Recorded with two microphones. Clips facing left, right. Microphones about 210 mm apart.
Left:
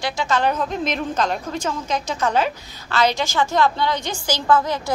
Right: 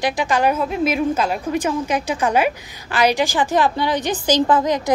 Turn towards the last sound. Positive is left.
turn(degrees=-15)  # may be behind; listen again after turning